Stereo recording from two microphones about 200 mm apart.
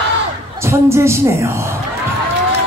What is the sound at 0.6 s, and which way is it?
A woman's voice, 15° right (ahead or behind).